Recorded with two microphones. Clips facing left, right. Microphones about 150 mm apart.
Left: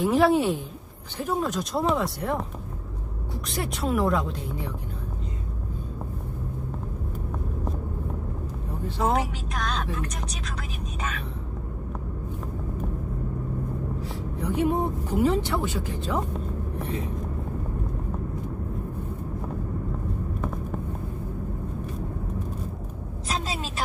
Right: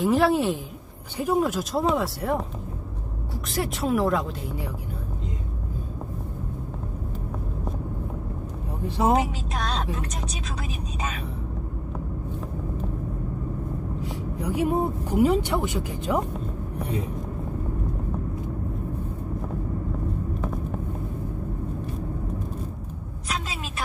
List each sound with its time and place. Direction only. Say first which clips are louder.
0.0 s speech: even; centre (ahead or behind)
3.4 s speech: right 2 dB; centre (ahead or behind)
8.8 s speech: right 3 dB; 10° right (ahead or behind)
14.0 s speech: right 1 dB; 10° right (ahead or behind)
23.2 s a sound: left 2 dB; 35° left (ahead or behind)